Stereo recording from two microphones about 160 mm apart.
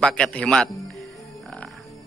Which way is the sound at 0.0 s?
5° left (ahead or behind).